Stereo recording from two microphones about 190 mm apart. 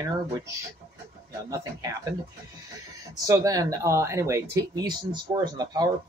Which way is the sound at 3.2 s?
20° right (ahead or behind).